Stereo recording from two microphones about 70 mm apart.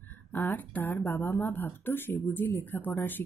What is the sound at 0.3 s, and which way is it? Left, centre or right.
A woman's voice, left.